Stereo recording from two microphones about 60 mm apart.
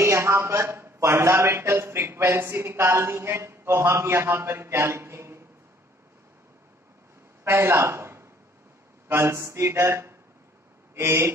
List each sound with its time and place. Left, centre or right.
0.0 s a man's voice: right
7.4 s a man's voice: right